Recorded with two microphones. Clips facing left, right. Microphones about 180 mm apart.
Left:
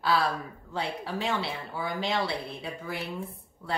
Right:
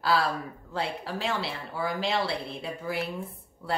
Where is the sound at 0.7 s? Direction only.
Centre (ahead or behind).